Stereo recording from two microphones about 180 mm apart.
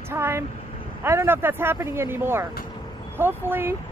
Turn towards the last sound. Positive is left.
turn(degrees=-10)  # may be behind; listen again after turning